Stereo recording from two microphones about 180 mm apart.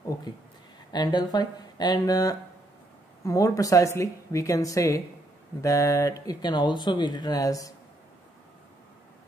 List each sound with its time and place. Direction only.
0.9 s speech: 25° left (ahead or behind)